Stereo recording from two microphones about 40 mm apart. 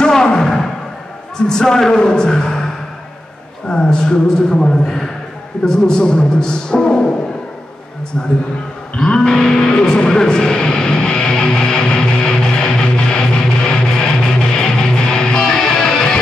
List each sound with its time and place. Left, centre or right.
0.0 s a sound: centre
1.5 s a man's voice: centre
8.9 s music: centre